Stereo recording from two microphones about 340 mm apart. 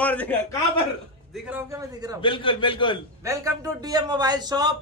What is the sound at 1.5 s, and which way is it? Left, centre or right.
Speech, centre.